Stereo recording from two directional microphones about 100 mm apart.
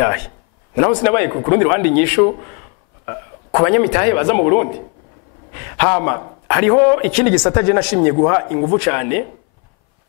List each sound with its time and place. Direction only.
0.7 s a man's voice: 20° left (ahead or behind)
5.5 s a sound: 15° left (ahead or behind)
5.9 s speech: 15° left (ahead or behind)